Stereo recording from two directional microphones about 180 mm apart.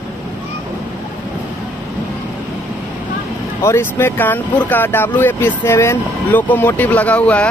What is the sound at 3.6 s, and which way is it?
Speech, 15° left (ahead or behind).